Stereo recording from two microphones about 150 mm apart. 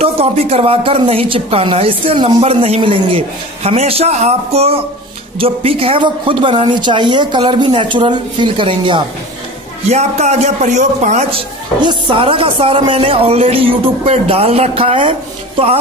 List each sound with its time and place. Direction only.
0.0 s a woman's voice: 45° right (ahead or behind)
9.8 s a man's voice: 45° right (ahead or behind)
11.3 s a woman's voice: 30° right (ahead or behind)